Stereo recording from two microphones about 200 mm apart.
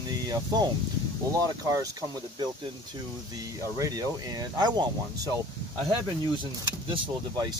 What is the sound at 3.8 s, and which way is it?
Speech, 20° right (ahead or behind).